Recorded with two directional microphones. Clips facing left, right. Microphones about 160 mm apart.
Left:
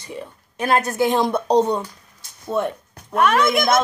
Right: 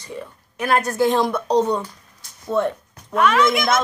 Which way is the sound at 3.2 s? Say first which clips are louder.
Even; 50° left (ahead or behind).